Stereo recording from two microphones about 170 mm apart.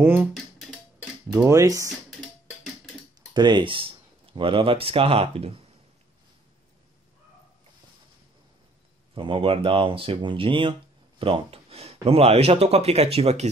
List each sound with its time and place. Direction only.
0.0 s speech: 10° right (ahead or behind)
3.3 s speech: 25° right (ahead or behind)
9.1 s speech: 30° right (ahead or behind)